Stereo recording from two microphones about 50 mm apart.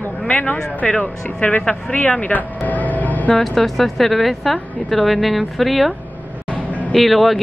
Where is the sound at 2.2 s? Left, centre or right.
Left.